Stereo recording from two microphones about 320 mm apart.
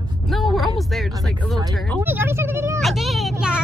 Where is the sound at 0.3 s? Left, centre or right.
Centre.